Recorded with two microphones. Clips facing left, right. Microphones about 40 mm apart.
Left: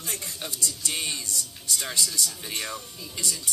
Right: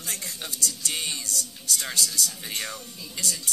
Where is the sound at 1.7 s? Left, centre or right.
Centre.